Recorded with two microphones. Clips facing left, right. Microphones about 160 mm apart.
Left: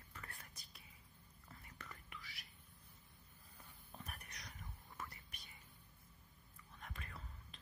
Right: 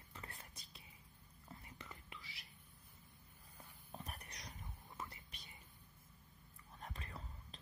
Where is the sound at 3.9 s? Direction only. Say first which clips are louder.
Right 3 dB; 35° right (ahead or behind).